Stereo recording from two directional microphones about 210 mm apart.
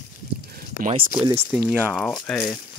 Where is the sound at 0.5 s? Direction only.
45° right (ahead or behind).